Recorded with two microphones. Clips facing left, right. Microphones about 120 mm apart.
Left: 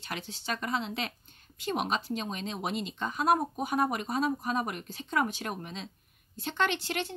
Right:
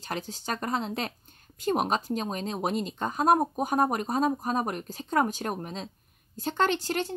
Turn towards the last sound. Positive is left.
turn(degrees=-40)  # may be behind; listen again after turning